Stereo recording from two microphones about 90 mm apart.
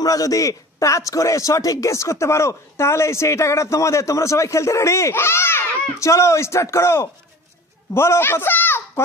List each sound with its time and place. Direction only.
0.0 s a man's voice: 40° left (ahead or behind); by 9.0 s 25° left (ahead or behind)